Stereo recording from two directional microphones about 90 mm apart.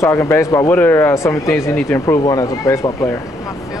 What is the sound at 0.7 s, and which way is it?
Speech, 20° left (ahead or behind).